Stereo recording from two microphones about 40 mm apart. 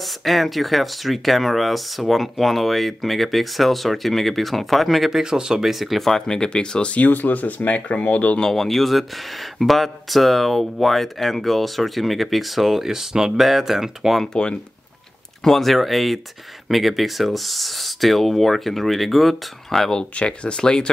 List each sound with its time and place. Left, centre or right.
0.0 s speech: centre
5.2 s speech: centre
6.0 s speech: centre
7.0 s speech: left
8.5 s speech: centre
14.2 s speech: left
15.4 s speech: centre
19.9 s speech: left